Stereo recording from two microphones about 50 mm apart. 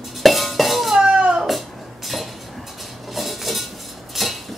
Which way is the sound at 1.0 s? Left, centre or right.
Centre.